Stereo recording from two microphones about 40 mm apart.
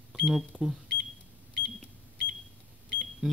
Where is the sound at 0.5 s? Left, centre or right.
Right.